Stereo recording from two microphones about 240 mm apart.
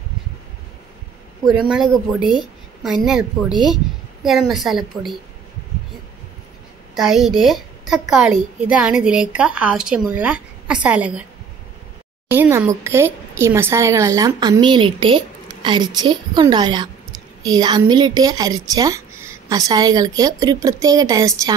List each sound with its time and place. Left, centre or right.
1.7 s a woman's voice: centre
7.0 s a woman's voice: centre
12.3 s speech: centre